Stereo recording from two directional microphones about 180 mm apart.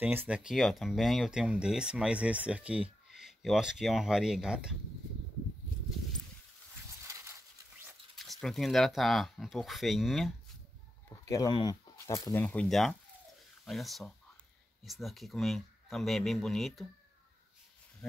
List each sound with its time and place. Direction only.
0.0 s speech: 10° right (ahead or behind)
7.0 s a sound: 15° right (ahead or behind)
8.2 s speech: centre (ahead or behind)
11.1 s speech: 20° left (ahead or behind); by 16.8 s centre (ahead or behind)